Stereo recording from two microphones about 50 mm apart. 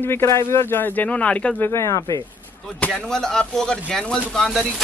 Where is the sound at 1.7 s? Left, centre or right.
Left.